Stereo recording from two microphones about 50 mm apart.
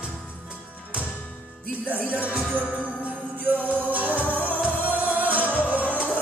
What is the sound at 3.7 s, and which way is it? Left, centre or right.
Music, right.